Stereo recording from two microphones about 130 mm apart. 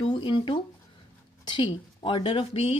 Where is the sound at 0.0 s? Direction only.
40° left (ahead or behind).